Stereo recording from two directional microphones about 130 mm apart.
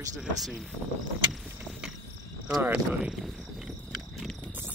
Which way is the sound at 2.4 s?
15° right (ahead or behind).